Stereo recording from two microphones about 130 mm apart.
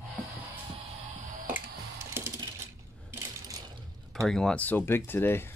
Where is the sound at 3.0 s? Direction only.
20° right (ahead or behind).